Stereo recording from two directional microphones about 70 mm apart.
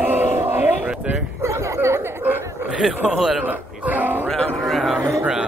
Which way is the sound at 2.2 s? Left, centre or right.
Right.